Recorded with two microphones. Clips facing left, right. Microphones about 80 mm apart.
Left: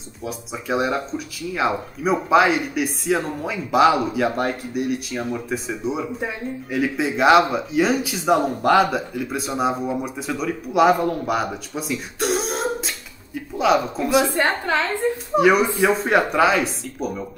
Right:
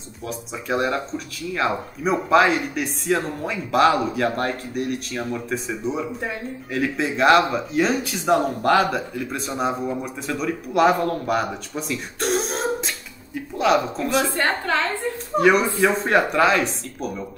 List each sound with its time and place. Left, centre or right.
0.2 s a woman's voice: centre
15.3 s speech: centre